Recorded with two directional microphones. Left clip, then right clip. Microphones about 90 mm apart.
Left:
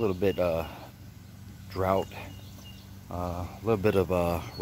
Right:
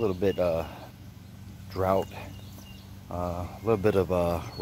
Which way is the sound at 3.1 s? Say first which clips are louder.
Right 2 dB; 40° left (ahead or behind).